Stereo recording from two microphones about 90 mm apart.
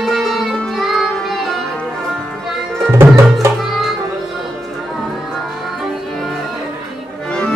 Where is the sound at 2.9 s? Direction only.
30° right (ahead or behind).